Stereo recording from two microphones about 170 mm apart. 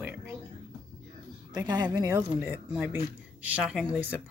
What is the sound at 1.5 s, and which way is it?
Speech, 25° right (ahead or behind).